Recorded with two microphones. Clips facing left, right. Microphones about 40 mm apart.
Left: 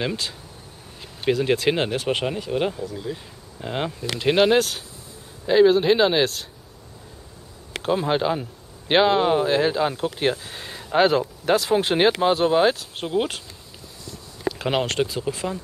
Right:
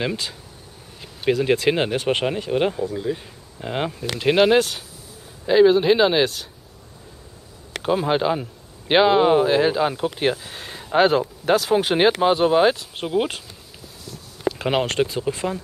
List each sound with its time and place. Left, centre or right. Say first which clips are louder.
0.0 s speech: right 1 dB; centre
3.6 s speech: right 2 dB; centre
7.8 s speech: right 2 dB; centre
14.6 s speech: right 2 dB; centre